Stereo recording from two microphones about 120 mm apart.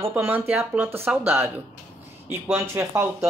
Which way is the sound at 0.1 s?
15° right (ahead or behind).